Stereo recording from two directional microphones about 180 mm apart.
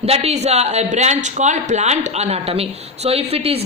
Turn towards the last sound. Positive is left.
turn(degrees=-35)  # may be behind; listen again after turning